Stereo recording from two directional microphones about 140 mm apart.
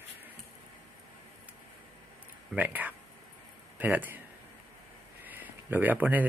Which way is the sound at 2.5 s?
10° right (ahead or behind).